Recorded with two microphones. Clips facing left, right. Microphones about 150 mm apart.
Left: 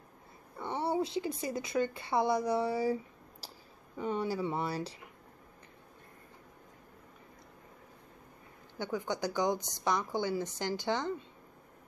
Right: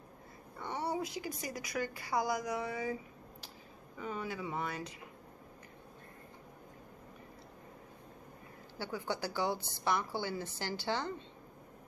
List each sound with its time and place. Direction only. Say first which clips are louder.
0.6 s a woman's voice: left 4 dB; 25° left (ahead or behind)
8.7 s a woman's voice: left 3 dB; 20° left (ahead or behind)